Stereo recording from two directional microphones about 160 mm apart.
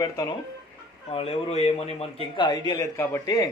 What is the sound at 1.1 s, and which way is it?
Speech, 40° left (ahead or behind).